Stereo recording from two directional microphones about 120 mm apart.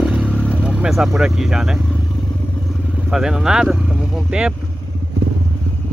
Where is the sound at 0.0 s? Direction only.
10° right (ahead or behind).